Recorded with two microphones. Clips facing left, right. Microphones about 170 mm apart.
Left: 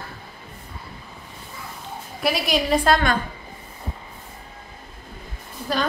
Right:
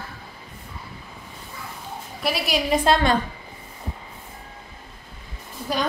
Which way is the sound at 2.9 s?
25° right (ahead or behind).